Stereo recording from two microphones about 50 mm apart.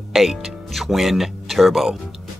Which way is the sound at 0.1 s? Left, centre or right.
Centre.